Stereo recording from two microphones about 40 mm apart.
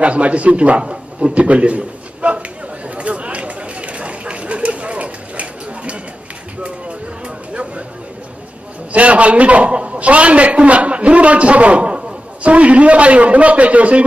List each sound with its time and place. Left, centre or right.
0.0 s a man's voice: right
3.0 s chatter: right
8.9 s a man's voice: right